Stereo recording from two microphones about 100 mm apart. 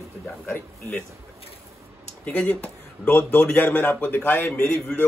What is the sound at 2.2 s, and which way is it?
A man's voice, 15° left (ahead or behind).